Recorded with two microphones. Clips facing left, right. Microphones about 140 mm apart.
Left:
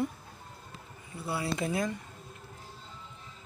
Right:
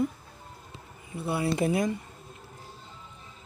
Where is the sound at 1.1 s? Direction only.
20° right (ahead or behind).